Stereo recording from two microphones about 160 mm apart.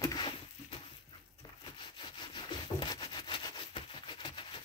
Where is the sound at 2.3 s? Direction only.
30° left (ahead or behind).